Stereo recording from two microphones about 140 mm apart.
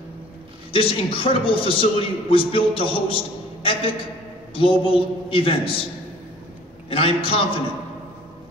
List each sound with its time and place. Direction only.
0.7 s a man's voice: 40° left (ahead or behind)
4.6 s a man's voice: 40° left (ahead or behind)
6.9 s a man's voice: 40° left (ahead or behind)